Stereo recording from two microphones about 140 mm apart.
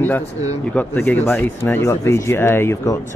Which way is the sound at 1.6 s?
15° left (ahead or behind).